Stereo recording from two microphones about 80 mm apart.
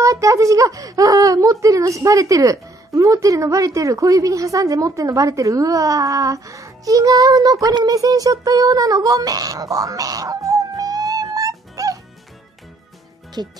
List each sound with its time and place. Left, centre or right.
0.0 s speech: right
13.4 s speech: right